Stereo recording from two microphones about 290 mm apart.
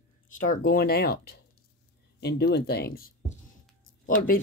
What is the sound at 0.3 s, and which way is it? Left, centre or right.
Speech, left.